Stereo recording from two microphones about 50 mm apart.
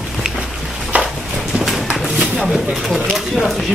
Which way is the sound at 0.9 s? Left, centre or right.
Right.